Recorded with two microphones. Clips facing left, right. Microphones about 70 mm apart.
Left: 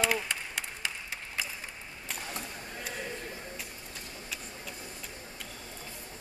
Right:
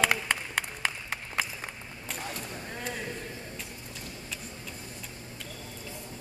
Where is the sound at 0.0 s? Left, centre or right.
Right.